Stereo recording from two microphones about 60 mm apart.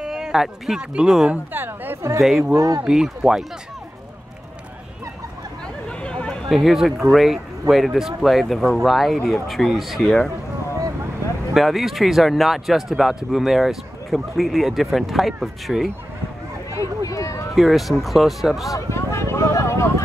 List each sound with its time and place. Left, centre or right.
0.0 s speech: centre
1.3 s a sound: right
2.0 s speech: right
2.2 s speech: centre
2.5 s speech: right
2.8 s speech: centre
5.9 s a sound: centre
6.5 s speech: centre
11.5 s speech: centre
16.7 s a sound: left
17.6 s speech: centre
18.7 s a sound: left